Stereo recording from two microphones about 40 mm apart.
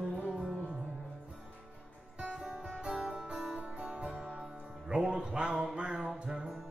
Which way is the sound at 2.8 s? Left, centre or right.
Right.